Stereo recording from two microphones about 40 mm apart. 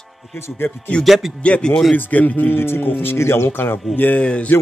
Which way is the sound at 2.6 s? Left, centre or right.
Left.